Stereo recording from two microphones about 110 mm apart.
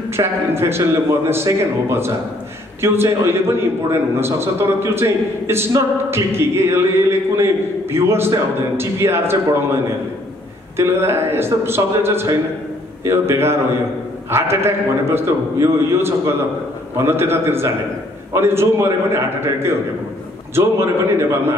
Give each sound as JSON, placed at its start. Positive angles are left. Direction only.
{"t": 0.1, "sound": "a man's voice", "side_deg": -25}
{"t": 10.8, "sound": "a man's voice", "side_deg": -20}